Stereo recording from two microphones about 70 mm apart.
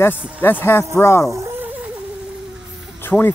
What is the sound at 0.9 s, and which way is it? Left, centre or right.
Speech, left.